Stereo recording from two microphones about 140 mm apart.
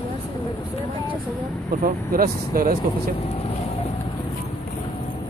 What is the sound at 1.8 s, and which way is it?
Speech, 90° right.